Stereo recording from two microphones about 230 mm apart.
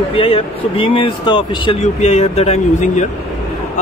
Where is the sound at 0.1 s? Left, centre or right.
Left.